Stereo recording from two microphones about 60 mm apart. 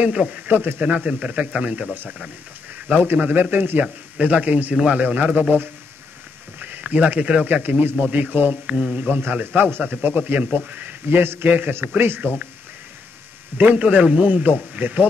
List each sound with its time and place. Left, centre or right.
0.0 s speech: centre
0.5 s a man's voice: right
2.9 s a man's voice: right
3.8 s a man's voice: right
13.6 s speech: right